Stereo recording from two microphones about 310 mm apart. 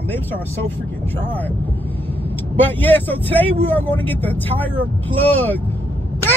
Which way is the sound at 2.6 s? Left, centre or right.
Centre.